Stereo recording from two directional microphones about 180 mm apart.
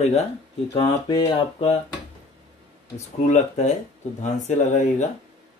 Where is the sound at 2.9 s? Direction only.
40° left (ahead or behind).